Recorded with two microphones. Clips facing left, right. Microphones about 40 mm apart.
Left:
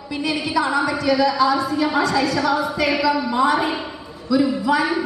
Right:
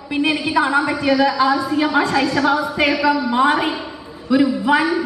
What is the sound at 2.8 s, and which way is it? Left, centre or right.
A woman's voice, right.